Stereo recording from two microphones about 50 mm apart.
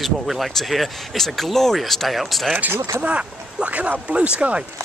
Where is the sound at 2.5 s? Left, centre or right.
Right.